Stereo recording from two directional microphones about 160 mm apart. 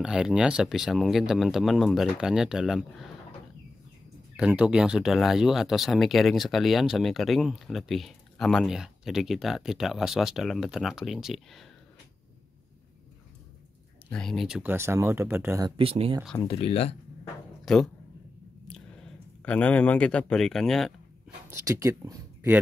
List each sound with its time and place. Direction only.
0.0 s speech: 5° right (ahead or behind)
4.4 s speech: 5° right (ahead or behind)
14.1 s speech: centre (ahead or behind)
14.6 s speech: 15° right (ahead or behind)
15.7 s speech: 35° right (ahead or behind)
16.3 s speech: 35° left (ahead or behind)
17.7 s speech: centre (ahead or behind)
19.4 s speech: 10° left (ahead or behind)
21.5 s speech: 15° right (ahead or behind)